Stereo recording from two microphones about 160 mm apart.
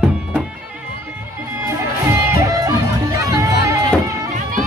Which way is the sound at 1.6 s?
15° right (ahead or behind).